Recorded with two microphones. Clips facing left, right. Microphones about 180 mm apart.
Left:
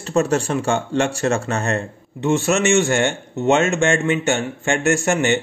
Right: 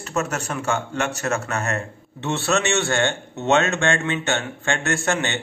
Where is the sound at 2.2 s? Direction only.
15° left (ahead or behind).